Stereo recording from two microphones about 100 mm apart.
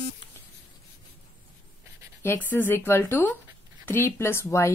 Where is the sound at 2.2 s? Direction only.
20° left (ahead or behind).